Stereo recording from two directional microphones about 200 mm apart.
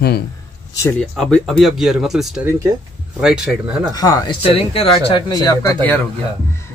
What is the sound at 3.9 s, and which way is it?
Speech, 20° left (ahead or behind).